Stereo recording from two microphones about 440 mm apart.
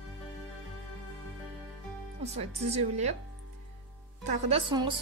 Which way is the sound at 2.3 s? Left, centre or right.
Centre.